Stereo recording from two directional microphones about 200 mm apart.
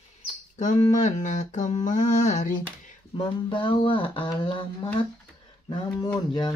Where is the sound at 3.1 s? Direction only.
25° left (ahead or behind).